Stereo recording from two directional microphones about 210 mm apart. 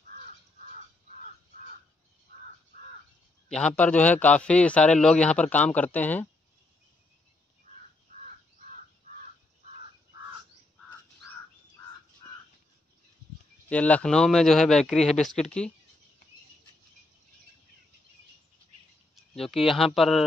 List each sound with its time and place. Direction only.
3.5 s a man's voice: 5° left (ahead or behind)
9.1 s bird: 30° right (ahead or behind)
12.2 s a sound: 15° left (ahead or behind)
13.7 s speech: 5° left (ahead or behind)
19.1 s speech: centre (ahead or behind)